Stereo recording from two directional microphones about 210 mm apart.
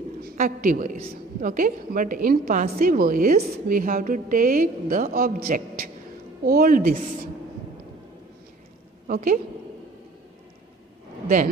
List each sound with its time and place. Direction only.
0.2 s a woman's voice: 40° right (ahead or behind)
9.0 s a woman's voice: 40° right (ahead or behind)